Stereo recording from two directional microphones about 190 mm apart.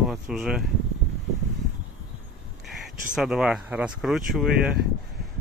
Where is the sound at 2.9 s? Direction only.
Centre (ahead or behind).